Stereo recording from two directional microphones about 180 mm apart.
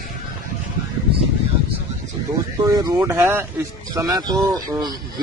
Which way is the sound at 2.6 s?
20° right (ahead or behind).